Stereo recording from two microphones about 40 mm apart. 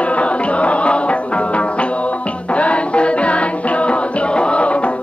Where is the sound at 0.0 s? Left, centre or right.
Left.